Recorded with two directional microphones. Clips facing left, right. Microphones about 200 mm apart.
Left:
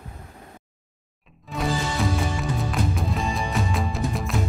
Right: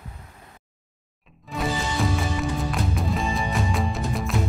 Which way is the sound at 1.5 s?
Centre (ahead or behind).